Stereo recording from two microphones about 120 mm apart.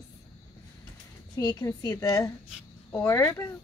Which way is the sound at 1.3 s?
35° left (ahead or behind).